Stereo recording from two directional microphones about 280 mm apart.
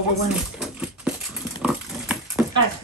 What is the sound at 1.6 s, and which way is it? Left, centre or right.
Pig, centre.